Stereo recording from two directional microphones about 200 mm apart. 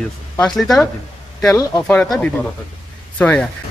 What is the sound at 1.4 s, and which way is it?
Speech, 15° left (ahead or behind).